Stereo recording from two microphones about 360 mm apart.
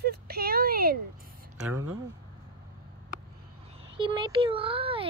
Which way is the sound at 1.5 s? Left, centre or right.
Centre.